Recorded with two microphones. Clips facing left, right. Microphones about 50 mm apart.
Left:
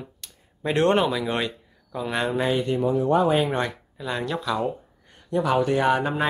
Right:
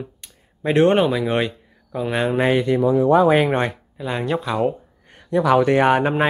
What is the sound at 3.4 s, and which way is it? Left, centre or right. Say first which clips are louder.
Speech: right 5 dB; right.